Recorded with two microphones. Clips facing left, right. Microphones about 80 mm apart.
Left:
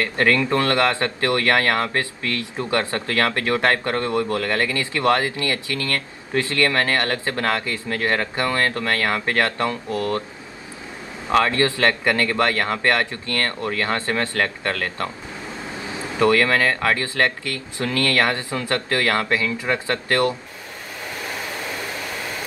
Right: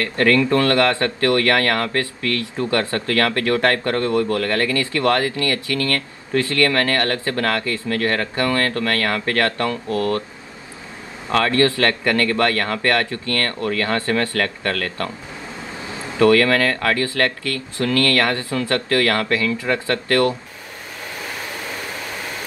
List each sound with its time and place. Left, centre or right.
0.0 s a man's voice: left
11.3 s a man's voice: left